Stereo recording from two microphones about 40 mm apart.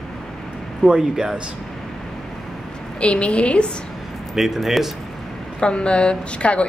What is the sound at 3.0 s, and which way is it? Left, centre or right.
Speech, left.